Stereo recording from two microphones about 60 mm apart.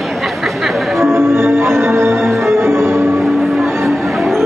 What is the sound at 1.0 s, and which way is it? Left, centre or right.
Music, right.